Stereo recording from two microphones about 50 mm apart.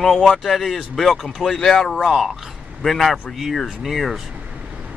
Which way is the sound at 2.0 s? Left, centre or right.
Centre.